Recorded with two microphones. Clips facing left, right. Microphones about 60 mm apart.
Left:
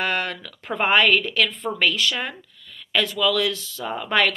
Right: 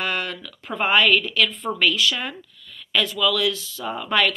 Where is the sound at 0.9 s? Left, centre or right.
Left.